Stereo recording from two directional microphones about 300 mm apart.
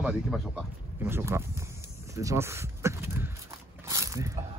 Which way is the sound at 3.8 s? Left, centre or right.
Centre.